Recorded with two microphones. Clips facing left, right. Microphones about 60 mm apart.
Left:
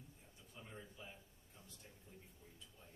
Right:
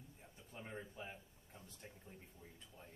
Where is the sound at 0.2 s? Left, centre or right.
Right.